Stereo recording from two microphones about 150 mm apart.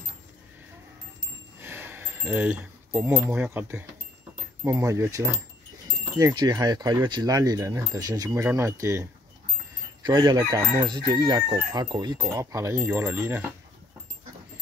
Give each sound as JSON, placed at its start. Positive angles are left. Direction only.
{"t": 1.6, "sound": "a sound", "side_deg": -15}
{"t": 3.3, "sound": "speech", "side_deg": -15}
{"t": 10.0, "sound": "speech", "side_deg": -30}